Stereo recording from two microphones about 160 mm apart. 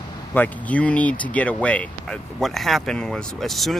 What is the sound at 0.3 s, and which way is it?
Speech, 10° left (ahead or behind).